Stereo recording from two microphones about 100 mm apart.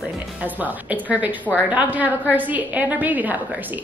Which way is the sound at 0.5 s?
15° right (ahead or behind).